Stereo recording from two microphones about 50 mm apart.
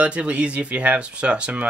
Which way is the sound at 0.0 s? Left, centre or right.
Right.